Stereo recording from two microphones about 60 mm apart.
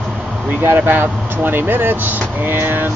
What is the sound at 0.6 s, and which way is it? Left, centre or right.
Speech, right.